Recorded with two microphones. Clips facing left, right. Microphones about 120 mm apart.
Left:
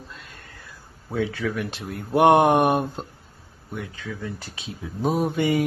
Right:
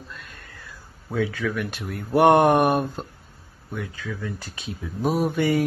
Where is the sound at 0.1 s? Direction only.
30° left (ahead or behind).